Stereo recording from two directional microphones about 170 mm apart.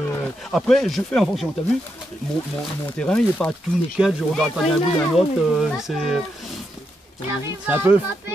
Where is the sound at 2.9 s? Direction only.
5° left (ahead or behind).